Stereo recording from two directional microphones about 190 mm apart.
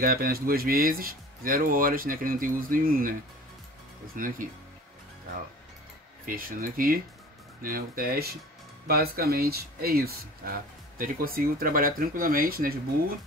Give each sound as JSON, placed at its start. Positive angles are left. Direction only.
{"t": 0.0, "sound": "speech", "side_deg": -50}
{"t": 6.2, "sound": "speech", "side_deg": -45}